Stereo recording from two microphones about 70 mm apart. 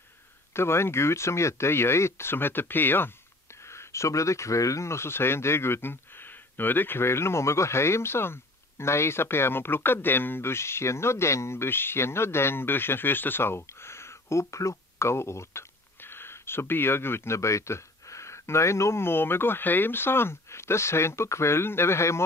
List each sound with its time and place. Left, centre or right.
0.5 s speech: left
3.6 s speech: left